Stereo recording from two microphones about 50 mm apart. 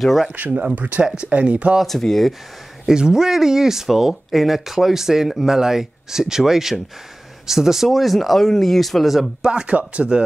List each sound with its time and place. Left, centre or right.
0.0 s speech: centre
0.4 s speech: right
1.8 s speech: centre
2.9 s speech: centre
9.4 s speech: centre